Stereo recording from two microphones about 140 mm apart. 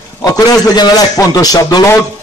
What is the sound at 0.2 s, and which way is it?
A man's voice, 25° left (ahead or behind).